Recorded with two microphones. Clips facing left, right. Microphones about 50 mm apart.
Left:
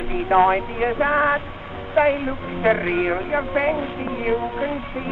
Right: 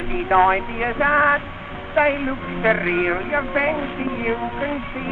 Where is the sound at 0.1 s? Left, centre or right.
Centre.